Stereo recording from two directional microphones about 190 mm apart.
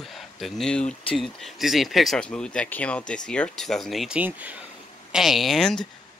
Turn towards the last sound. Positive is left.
turn(degrees=0)  # may be behind; listen again after turning